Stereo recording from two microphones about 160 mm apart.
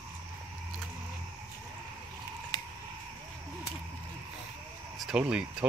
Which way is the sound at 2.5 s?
25° left (ahead or behind).